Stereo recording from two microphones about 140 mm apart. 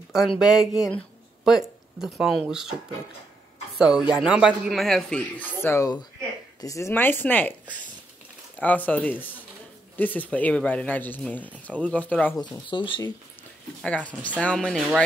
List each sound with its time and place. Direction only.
0.4 s a man's voice: 5° right (ahead or behind)
3.7 s a woman's voice: 5° right (ahead or behind); by 7.5 s 15° left (ahead or behind)
8.5 s speech: 10° left (ahead or behind)
12.4 s speech: 35° left (ahead or behind)
13.8 s speech: 10° left (ahead or behind)